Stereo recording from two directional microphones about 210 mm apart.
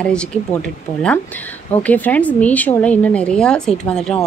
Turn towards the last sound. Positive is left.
turn(degrees=5)  # may be behind; listen again after turning